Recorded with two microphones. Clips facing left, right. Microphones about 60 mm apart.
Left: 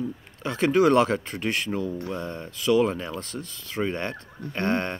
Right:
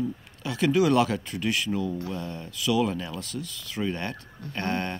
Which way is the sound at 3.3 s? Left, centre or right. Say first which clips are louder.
Even; left.